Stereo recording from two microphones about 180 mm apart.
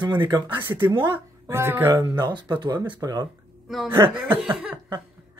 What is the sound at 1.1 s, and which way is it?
Speech, 15° right (ahead or behind).